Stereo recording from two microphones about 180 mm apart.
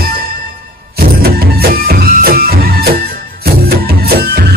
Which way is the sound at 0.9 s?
60° right (ahead or behind).